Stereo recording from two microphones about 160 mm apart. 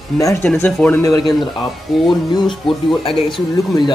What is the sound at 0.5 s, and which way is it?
Speech, 10° left (ahead or behind).